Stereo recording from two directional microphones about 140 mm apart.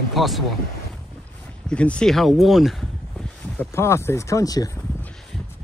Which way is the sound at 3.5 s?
20° left (ahead or behind).